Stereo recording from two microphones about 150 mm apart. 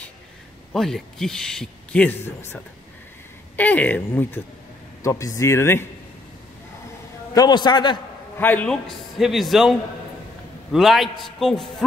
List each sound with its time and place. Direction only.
0.7 s speech: centre (ahead or behind)
7.3 s speech: 30° left (ahead or behind)
8.4 s speech: 10° left (ahead or behind)